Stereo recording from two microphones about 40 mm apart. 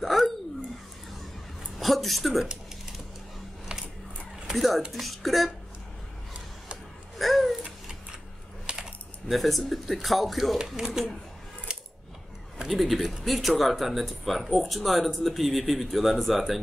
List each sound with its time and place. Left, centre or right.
0.0 s a sound: centre
1.8 s a woman's voice: centre
4.6 s speech: centre
7.2 s a sound: centre
8.6 s typing: centre
9.3 s speech: centre
12.6 s speech: centre